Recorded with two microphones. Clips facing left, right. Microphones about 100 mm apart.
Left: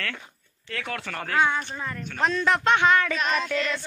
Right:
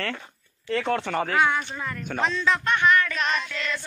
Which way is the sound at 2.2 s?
55° left (ahead or behind).